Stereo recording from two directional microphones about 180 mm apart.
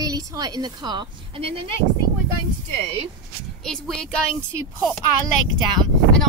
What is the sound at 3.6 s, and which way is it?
Speech, centre (ahead or behind).